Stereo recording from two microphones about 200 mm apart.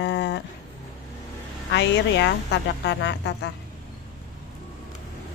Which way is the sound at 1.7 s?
65° left (ahead or behind).